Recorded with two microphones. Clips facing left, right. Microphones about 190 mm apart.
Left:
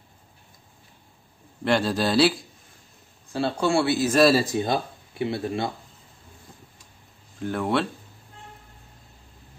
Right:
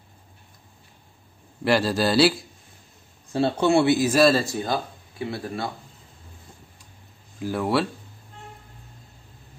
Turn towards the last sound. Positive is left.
turn(degrees=-5)  # may be behind; listen again after turning